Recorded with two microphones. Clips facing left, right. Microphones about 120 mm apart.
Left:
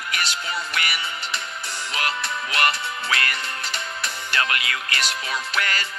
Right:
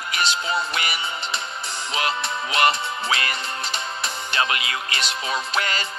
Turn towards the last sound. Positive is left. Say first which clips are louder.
# right 1 dB
turn(degrees=-25)  # may be behind; listen again after turning